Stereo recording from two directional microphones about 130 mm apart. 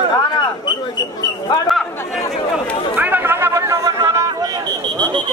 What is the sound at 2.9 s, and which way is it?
Chatter, 15° right (ahead or behind).